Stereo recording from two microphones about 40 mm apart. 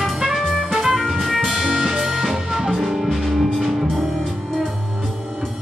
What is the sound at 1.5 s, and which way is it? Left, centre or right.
Music, centre.